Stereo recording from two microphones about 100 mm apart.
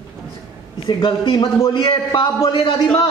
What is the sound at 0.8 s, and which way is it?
A man's voice, 45° left (ahead or behind).